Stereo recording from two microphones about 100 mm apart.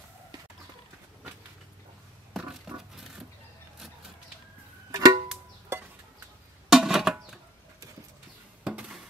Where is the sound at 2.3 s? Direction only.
5° right (ahead or behind).